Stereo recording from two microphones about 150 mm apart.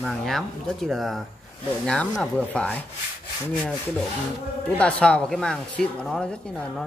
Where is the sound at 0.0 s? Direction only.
Centre (ahead or behind).